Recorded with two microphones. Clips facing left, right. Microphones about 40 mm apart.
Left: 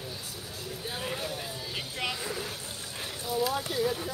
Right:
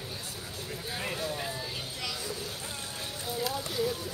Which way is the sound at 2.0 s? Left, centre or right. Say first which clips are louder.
Left 5 dB; left.